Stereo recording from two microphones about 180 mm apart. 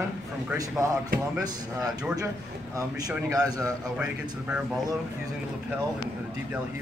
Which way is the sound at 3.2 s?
20° right (ahead or behind).